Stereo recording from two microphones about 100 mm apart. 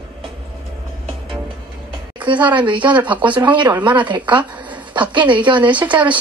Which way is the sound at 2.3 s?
55° right (ahead or behind).